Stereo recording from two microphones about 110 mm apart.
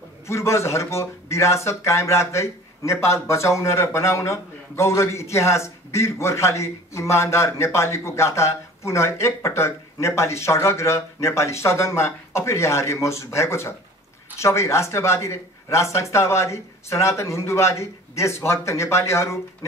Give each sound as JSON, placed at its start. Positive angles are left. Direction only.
{"t": 0.3, "sound": "speech", "side_deg": 25}